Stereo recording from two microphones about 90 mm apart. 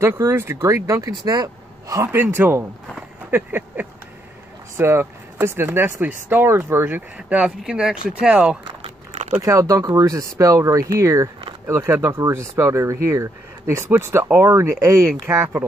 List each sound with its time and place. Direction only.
0.0 s speech: 30° right (ahead or behind)
2.1 s speech: 20° right (ahead or behind)
3.3 s a sound: 25° right (ahead or behind)
4.7 s speech: 25° right (ahead or behind)
7.2 s speech: 15° right (ahead or behind)
9.4 s speech: 35° right (ahead or behind)